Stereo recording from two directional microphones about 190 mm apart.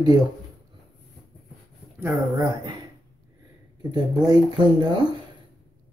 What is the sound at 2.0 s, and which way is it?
Speech, 20° right (ahead or behind).